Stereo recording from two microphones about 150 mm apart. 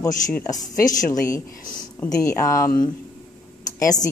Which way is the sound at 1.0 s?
20° left (ahead or behind).